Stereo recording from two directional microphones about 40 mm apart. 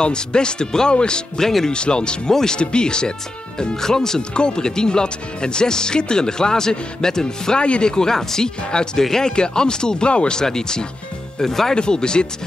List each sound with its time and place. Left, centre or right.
0.0 s speech: left
7.6 s speech: left
11.7 s speech: left